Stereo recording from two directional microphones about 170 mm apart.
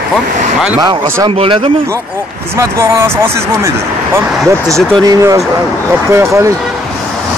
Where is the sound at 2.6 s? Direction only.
15° right (ahead or behind).